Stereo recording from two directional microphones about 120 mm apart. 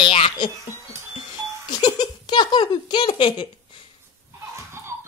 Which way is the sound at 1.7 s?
35° left (ahead or behind).